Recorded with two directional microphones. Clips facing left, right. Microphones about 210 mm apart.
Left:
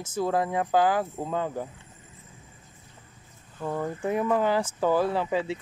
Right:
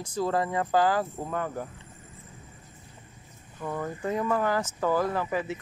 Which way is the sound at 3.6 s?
20° left (ahead or behind).